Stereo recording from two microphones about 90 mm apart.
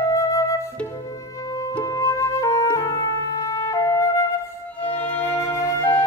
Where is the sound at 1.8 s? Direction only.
40° left (ahead or behind).